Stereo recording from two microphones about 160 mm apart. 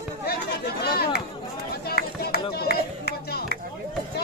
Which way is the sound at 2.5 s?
90° left.